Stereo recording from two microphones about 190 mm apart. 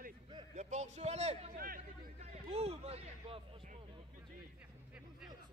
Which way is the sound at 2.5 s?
30° right (ahead or behind).